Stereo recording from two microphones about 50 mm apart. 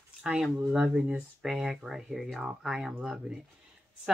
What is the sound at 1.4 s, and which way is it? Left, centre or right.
Speech, centre.